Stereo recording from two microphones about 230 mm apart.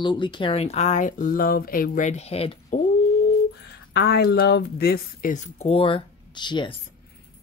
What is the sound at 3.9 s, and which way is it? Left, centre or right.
Speech, left.